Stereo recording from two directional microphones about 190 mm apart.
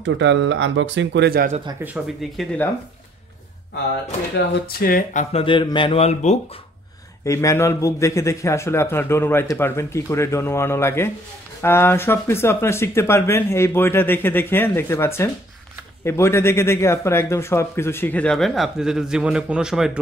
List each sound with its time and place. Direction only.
0.0 s speech: 70° right (ahead or behind); by 1.6 s 50° right (ahead or behind)
2.3 s speech: 10° left (ahead or behind)
4.4 s speech: 50° left (ahead or behind)
5.3 s speech: 25° left (ahead or behind)
7.2 s speech: 15° left (ahead or behind); by 20.0 s 5° right (ahead or behind)